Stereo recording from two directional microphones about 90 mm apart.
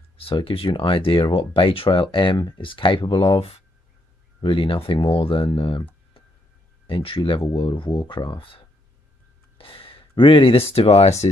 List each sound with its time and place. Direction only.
0.2 s speech: 90° left
4.4 s speech: 75° left (ahead or behind); by 5.5 s 90° left
5.6 s speech: 75° left (ahead or behind)
6.9 s speech: 80° left; by 8.5 s 65° left (ahead or behind)
9.6 s speech: 90° left